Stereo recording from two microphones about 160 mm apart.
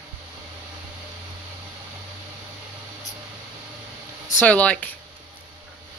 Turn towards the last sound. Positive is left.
turn(degrees=10)  # may be behind; listen again after turning